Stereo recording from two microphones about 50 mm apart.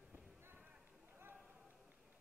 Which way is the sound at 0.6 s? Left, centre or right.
Right.